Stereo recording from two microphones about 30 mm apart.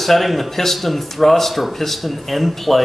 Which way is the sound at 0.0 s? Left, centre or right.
Centre.